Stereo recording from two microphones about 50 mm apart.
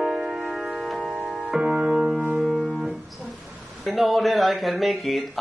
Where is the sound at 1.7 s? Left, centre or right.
Centre.